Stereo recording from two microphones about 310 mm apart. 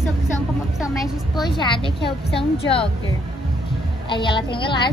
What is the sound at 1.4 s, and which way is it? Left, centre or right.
A woman's voice, centre.